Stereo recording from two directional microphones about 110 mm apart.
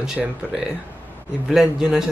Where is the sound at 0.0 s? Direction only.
5° right (ahead or behind).